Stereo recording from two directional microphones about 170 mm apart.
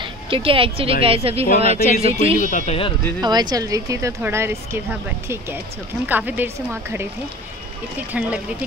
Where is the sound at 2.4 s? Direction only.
50° left (ahead or behind).